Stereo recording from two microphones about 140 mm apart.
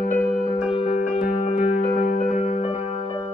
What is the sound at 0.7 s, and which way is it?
Music, 45° left (ahead or behind).